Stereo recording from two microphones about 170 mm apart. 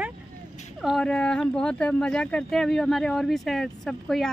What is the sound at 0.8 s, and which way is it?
Speech, 5° left (ahead or behind).